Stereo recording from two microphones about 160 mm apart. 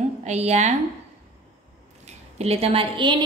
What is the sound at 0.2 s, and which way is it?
Speech, 45° right (ahead or behind).